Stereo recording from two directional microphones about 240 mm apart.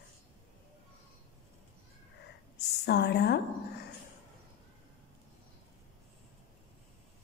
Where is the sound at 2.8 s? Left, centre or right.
Left.